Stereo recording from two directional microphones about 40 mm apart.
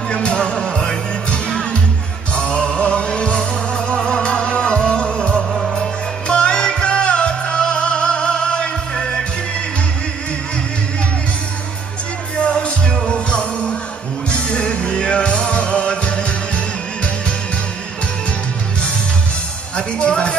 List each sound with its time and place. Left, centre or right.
0.1 s music: left
2.3 s music: left
12.4 s music: left
20.0 s a sound: left